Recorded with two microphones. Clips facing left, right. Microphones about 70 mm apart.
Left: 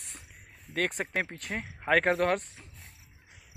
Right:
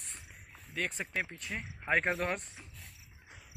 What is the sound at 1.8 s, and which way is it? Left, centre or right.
Speech, left.